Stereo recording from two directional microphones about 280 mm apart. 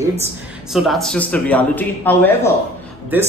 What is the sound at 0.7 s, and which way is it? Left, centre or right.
A man's voice, centre.